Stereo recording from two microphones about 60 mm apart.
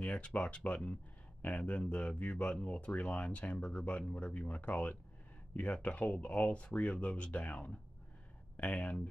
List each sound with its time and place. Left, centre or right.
0.0 s speech: left